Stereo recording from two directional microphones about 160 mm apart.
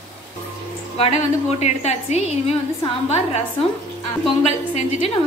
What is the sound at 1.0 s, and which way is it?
A woman's voice, 40° left (ahead or behind).